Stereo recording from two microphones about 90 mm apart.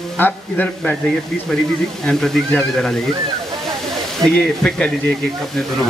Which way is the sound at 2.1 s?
5° left (ahead or behind).